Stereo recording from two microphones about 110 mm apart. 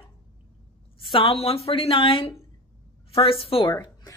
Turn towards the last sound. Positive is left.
turn(degrees=55)  # may be behind; listen again after turning